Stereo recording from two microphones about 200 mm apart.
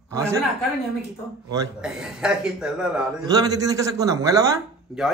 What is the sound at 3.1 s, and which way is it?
A man's voice, 20° right (ahead or behind).